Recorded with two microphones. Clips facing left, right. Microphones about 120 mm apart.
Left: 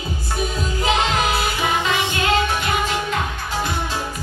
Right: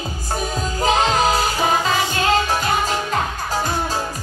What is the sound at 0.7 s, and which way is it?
Music, 40° right (ahead or behind).